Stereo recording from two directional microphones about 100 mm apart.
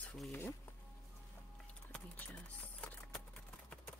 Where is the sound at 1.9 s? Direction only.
15° left (ahead or behind).